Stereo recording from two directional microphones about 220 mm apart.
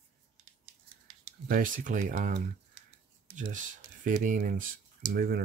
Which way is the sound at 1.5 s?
40° right (ahead or behind).